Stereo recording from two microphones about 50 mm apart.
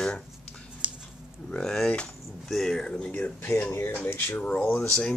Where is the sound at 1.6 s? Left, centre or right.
Centre; by 4.7 s left.